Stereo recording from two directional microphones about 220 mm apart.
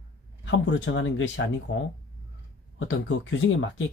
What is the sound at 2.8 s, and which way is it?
Speech, 60° left (ahead or behind).